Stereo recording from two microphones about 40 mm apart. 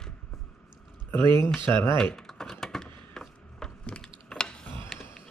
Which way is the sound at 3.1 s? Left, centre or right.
Centre.